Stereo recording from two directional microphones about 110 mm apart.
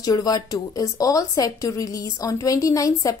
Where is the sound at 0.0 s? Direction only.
35° left (ahead or behind).